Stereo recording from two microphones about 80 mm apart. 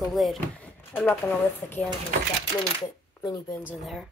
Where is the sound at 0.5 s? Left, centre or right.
Centre.